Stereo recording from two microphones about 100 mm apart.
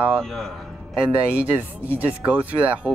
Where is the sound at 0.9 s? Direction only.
10° right (ahead or behind).